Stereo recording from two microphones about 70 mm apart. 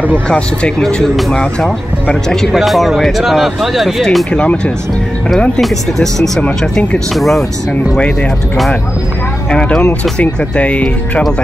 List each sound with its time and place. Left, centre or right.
0.3 s speech: centre
4.3 s speech: centre
5.6 s speech: centre
9.5 s speech: centre